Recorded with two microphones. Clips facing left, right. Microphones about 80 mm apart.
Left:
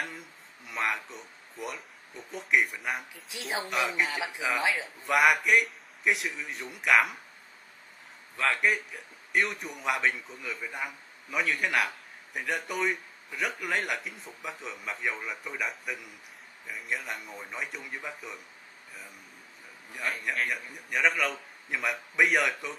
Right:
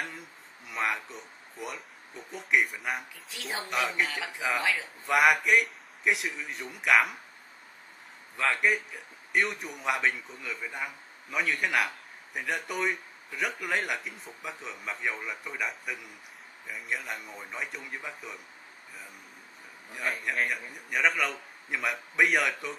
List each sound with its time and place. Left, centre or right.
0.7 s a man's voice: centre
4.1 s a man's voice: centre
5.0 s a man's voice: centre
8.4 s a man's voice: centre
19.9 s a man's voice: centre